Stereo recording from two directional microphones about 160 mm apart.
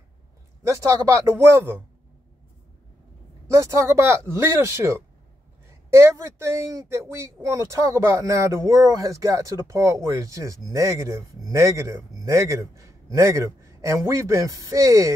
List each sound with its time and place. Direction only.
0.7 s speech: 20° right (ahead or behind)
3.4 s speech: 20° right (ahead or behind)